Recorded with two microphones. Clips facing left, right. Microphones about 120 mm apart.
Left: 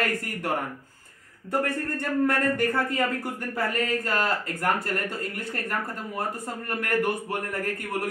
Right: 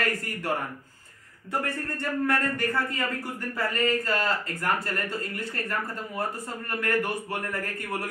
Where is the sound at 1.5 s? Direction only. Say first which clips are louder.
Left 4 dB; 50° left (ahead or behind).